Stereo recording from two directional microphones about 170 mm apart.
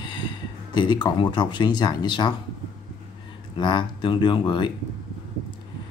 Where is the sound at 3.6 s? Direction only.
25° left (ahead or behind).